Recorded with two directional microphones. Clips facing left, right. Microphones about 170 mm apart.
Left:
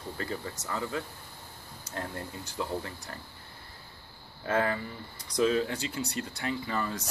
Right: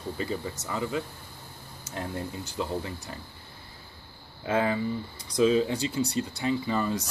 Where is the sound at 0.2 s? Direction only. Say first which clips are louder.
Right 3 dB; 15° right (ahead or behind).